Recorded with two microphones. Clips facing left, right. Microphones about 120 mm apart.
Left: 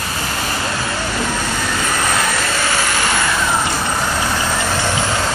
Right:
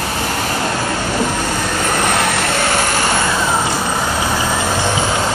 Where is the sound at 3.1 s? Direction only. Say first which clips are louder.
Right 2 dB; 20° right (ahead or behind).